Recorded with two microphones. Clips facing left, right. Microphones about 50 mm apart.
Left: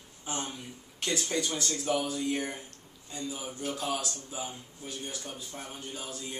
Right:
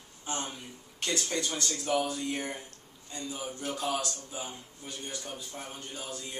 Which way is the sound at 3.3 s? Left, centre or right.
Centre.